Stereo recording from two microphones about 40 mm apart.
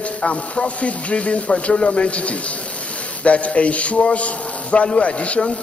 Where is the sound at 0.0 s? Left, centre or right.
Left.